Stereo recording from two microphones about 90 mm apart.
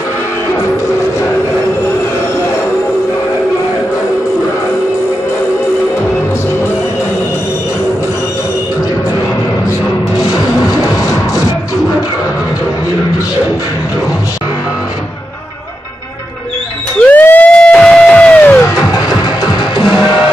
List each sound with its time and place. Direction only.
10.7 s music: 40° left (ahead or behind)
17.0 s music: 20° left (ahead or behind)
18.9 s music: 45° left (ahead or behind)